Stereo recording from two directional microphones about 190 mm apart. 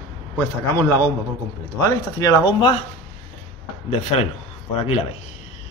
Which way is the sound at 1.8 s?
20° left (ahead or behind).